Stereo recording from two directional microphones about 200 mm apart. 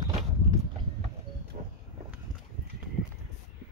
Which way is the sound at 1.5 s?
40° right (ahead or behind).